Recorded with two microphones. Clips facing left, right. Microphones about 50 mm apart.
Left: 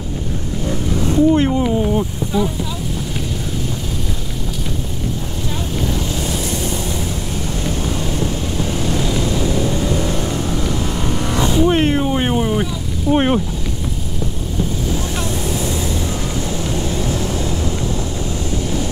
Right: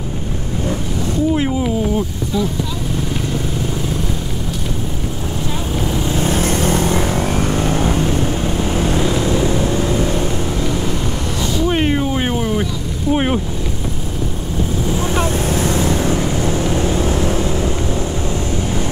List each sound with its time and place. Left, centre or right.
1.3 s speech: centre
2.3 s speech: centre
5.9 s vehicle: right
6.2 s vehicle: right
8.6 s vehicle: right
11.3 s vehicle: left
11.7 s cat: centre
13.1 s boat: centre
15.0 s vehicle: right
15.4 s vehicle: right
16.4 s vehicle: right